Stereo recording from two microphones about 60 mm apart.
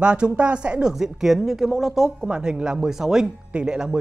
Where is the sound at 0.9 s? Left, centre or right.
Centre.